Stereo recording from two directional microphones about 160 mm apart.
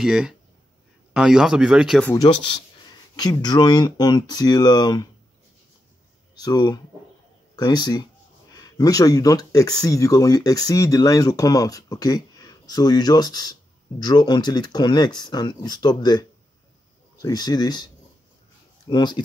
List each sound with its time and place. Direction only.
0.0 s speech: 5° right (ahead or behind)
2.1 s speech: 30° left (ahead or behind)
6.3 s speech: 25° left (ahead or behind)
18.9 s speech: 30° left (ahead or behind)